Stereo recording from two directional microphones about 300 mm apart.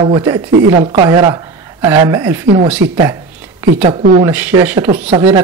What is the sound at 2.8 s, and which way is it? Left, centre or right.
Speech, right.